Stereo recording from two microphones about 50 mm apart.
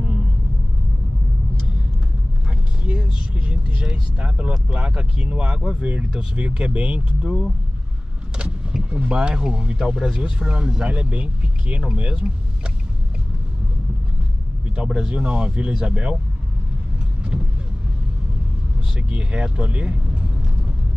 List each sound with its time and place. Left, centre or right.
3.0 s speech: right
8.7 s speech: centre
14.8 s speech: centre
18.9 s speech: right